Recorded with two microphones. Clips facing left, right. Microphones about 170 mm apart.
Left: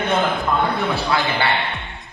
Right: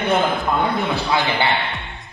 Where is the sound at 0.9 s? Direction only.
20° right (ahead or behind).